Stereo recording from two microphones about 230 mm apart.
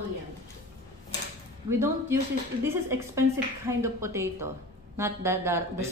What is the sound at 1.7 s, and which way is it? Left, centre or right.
A woman's voice, centre.